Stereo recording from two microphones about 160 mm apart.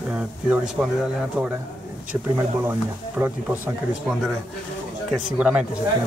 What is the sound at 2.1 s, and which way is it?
Speech, 15° right (ahead or behind).